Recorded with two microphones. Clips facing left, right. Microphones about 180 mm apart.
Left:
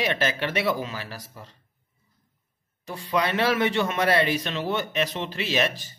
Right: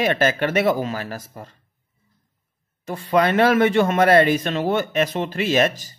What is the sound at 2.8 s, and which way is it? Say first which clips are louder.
Speech: right 7 dB; 50° right (ahead or behind).